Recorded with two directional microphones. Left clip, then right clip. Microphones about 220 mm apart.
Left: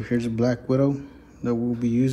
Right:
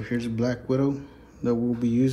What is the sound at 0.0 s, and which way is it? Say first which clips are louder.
Speech: left 4 dB; 10° right (ahead or behind).